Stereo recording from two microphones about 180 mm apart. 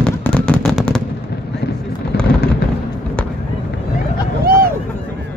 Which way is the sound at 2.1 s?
65° left (ahead or behind).